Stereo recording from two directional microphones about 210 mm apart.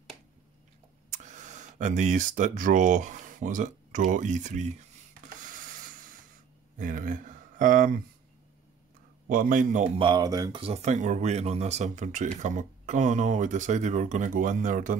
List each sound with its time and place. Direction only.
1.1 s speech: 35° right (ahead or behind)
5.5 s a sound: 40° right (ahead or behind)
6.8 s speech: 40° right (ahead or behind)
9.3 s speech: 40° right (ahead or behind)
9.9 s speech: 20° right (ahead or behind); by 15.0 s 40° right (ahead or behind)